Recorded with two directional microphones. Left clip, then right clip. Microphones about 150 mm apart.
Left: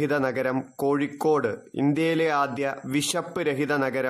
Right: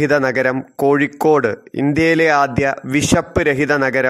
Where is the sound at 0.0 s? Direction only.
30° right (ahead or behind).